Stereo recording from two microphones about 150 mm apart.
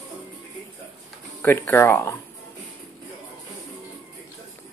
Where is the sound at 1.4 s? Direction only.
15° left (ahead or behind).